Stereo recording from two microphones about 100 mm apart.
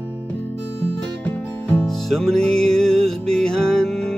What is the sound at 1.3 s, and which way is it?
Music, 10° left (ahead or behind).